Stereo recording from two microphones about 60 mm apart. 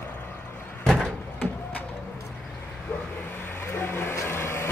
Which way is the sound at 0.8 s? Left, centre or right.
Centre.